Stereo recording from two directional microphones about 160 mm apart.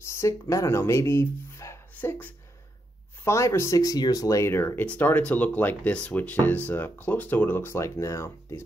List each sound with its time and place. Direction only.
0.1 s speech: 20° left (ahead or behind)